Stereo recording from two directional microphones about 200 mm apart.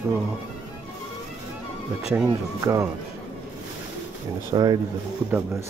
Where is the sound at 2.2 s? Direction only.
15° right (ahead or behind).